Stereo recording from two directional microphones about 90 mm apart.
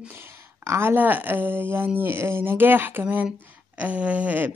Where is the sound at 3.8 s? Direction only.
15° right (ahead or behind).